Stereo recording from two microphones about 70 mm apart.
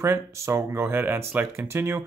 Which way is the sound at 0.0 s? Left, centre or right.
Right.